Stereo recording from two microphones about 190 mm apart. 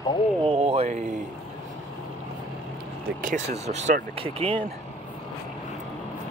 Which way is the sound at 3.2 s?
35° right (ahead or behind).